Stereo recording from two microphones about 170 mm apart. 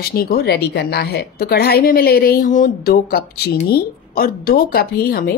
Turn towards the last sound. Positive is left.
turn(degrees=65)  # may be behind; listen again after turning